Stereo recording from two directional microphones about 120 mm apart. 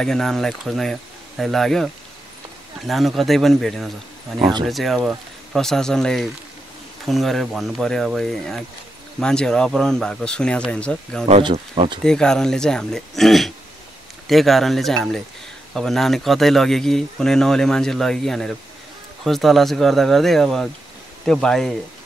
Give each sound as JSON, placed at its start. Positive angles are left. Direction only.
{"t": 0.0, "sound": "speech", "side_deg": 5}
{"t": 2.9, "sound": "speech", "side_deg": 0}
{"t": 11.5, "sound": "speech", "side_deg": -55}
{"t": 12.0, "sound": "speech", "side_deg": 5}